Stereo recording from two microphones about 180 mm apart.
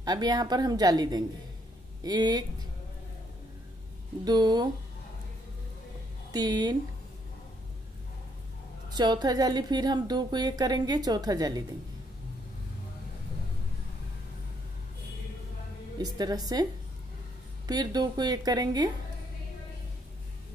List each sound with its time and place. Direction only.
0.0 s a woman's voice: 20° right (ahead or behind)
4.2 s a woman's voice: 25° right (ahead or behind)
6.3 s a woman's voice: 20° right (ahead or behind)
8.9 s a woman's voice: 25° right (ahead or behind)
16.0 s a woman's voice: 20° right (ahead or behind)
17.6 s a woman's voice: 20° right (ahead or behind)